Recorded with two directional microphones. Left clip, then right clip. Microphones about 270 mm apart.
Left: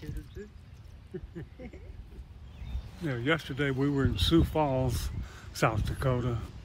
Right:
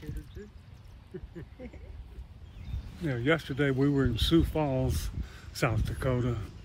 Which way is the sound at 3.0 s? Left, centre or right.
Centre.